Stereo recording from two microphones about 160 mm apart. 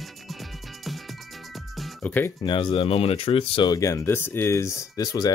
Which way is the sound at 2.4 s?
30° left (ahead or behind).